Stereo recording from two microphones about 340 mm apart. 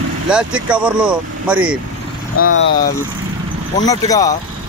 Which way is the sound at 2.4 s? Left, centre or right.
Left.